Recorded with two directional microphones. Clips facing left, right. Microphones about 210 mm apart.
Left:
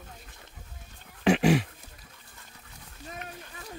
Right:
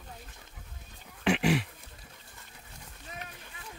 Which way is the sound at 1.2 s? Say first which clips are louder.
Left 5 dB; 40° left (ahead or behind).